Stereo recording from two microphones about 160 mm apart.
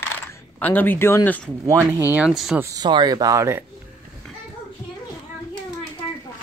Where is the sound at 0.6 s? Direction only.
10° left (ahead or behind).